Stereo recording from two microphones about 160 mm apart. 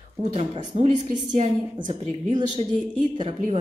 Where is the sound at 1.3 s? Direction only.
50° right (ahead or behind).